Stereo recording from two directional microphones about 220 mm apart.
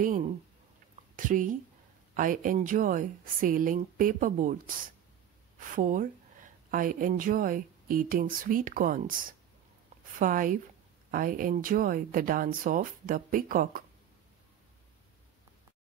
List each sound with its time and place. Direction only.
0.0 s speech: 40° right (ahead or behind)
5.8 s speech: 35° right (ahead or behind)